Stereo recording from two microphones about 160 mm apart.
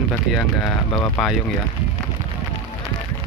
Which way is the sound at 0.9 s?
20° left (ahead or behind).